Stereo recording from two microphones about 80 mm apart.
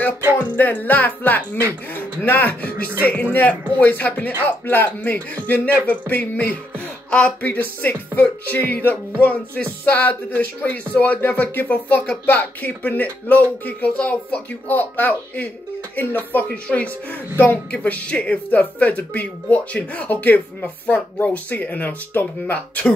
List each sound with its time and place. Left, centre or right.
0.6 s speech: left